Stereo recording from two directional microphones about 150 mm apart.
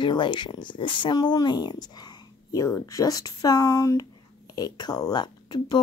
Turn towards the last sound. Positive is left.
turn(degrees=30)  # may be behind; listen again after turning